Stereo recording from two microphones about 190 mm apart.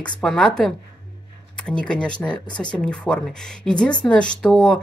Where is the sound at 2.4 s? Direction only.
25° left (ahead or behind).